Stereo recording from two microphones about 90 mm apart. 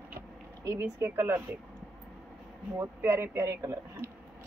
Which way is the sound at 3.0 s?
25° right (ahead or behind).